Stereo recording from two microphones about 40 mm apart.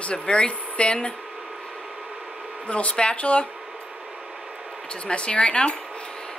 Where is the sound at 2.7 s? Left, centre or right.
Left.